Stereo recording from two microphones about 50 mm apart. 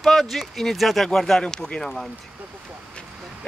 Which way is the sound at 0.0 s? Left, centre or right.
Centre.